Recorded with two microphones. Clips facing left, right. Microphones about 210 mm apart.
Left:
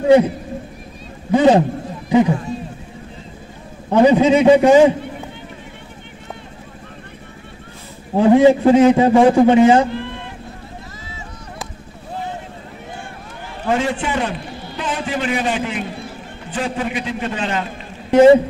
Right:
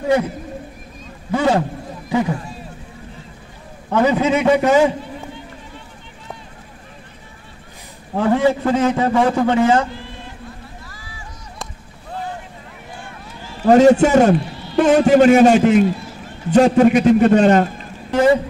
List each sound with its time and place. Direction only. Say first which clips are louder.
1.3 s a man's voice: left 5 dB; 20° left (ahead or behind)
3.9 s a man's voice: left 4 dB; 20° left (ahead or behind)
8.1 s a man's voice: left 5 dB; 20° left (ahead or behind)
9.8 s run: left 7 dB; 60° left (ahead or behind)
13.7 s a man's voice: right 10 dB; 40° right (ahead or behind)
18.1 s a man's voice: left 6 dB; 25° left (ahead or behind)